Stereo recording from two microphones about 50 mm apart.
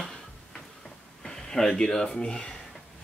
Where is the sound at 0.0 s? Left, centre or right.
Centre.